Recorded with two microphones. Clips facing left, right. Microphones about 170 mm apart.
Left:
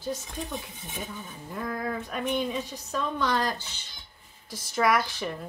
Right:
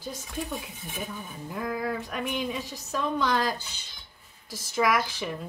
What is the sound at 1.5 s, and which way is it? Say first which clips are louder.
A woman's voice: right 1 dB; 10° right (ahead or behind).